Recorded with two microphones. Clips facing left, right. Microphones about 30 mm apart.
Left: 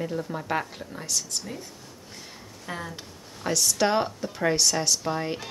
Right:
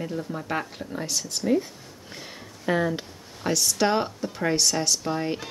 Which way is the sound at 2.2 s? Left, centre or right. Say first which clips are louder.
Right 4 dB; right.